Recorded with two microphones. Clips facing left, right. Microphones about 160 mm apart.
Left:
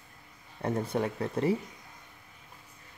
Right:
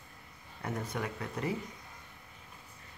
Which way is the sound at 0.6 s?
30° left (ahead or behind).